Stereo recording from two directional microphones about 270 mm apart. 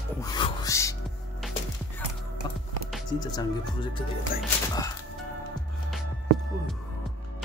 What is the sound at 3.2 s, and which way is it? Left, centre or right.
Speech, centre.